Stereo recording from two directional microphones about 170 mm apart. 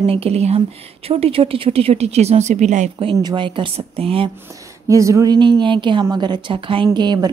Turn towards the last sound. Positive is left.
turn(degrees=-25)  # may be behind; listen again after turning